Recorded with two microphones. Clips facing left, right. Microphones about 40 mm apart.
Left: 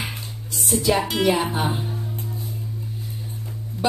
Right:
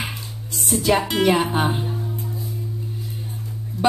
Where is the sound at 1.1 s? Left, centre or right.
Right.